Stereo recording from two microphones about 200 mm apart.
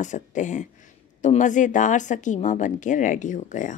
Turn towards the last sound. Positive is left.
turn(degrees=40)  # may be behind; listen again after turning